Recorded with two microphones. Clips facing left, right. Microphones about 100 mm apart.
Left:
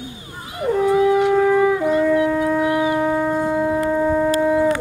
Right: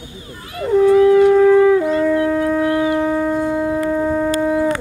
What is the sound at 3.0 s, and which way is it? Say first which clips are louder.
Shofar: right 1 dB; 5° left (ahead or behind).